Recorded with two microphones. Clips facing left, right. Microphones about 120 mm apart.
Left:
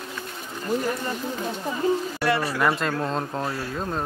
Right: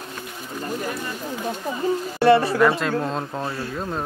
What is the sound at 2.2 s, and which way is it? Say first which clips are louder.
Speech: right 8 dB; 25° right (ahead or behind).